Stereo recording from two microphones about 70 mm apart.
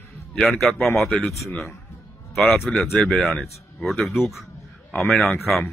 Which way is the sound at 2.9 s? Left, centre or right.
Centre.